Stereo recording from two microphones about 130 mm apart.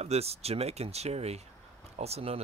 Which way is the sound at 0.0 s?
55° right (ahead or behind).